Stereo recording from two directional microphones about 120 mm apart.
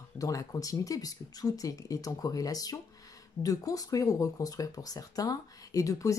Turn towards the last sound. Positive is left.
turn(degrees=25)  # may be behind; listen again after turning